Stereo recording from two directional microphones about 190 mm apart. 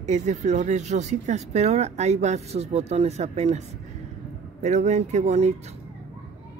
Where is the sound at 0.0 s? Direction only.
40° right (ahead or behind).